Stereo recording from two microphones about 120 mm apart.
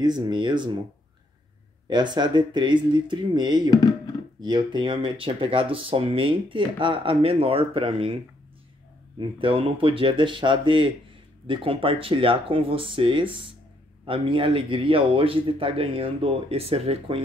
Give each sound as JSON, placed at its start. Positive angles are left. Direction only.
{"t": 0.0, "sound": "speech", "side_deg": -35}
{"t": 1.9, "sound": "speech", "side_deg": -35}
{"t": 3.7, "sound": "a sound", "side_deg": 35}
{"t": 4.4, "sound": "speech", "side_deg": -40}
{"t": 9.4, "sound": "speech", "side_deg": -45}